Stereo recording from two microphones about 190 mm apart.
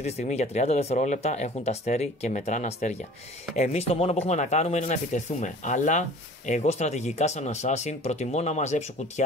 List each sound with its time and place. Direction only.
0.0 s speech: 35° left (ahead or behind)